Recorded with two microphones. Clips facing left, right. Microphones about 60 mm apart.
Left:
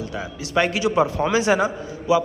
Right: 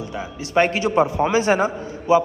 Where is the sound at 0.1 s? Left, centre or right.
Right.